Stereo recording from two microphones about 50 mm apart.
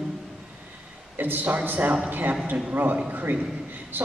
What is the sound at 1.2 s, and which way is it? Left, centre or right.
A man's voice, right.